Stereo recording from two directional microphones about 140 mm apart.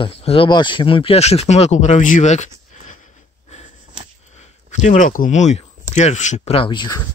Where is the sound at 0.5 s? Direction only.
35° left (ahead or behind); by 3.0 s 55° left (ahead or behind).